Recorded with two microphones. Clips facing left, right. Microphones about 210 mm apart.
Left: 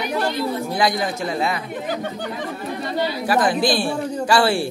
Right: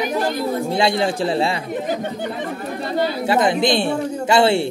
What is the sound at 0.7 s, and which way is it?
Speech, 25° right (ahead or behind).